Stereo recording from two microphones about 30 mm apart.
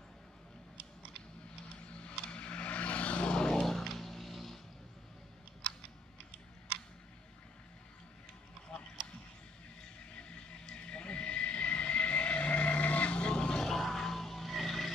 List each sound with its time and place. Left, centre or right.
1.9 s vehicle: left
3.3 s vehicle: left
3.6 s music: centre
8.7 s a sound: centre
10.1 s train: left
13.2 s vehicle: left
13.7 s music: centre